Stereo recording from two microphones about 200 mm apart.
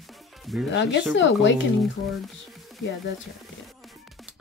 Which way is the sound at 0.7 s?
65° left (ahead or behind).